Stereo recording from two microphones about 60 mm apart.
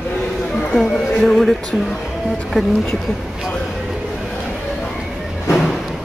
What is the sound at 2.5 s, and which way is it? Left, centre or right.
Speech, centre.